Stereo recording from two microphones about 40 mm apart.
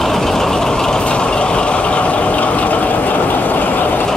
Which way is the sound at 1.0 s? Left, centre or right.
Left.